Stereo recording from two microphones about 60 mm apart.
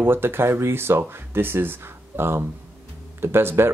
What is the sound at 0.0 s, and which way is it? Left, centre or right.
Speech, right.